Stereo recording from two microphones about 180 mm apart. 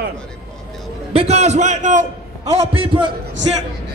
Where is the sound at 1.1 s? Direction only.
35° right (ahead or behind).